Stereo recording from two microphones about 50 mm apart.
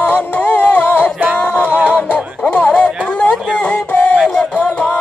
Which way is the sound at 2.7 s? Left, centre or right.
Left.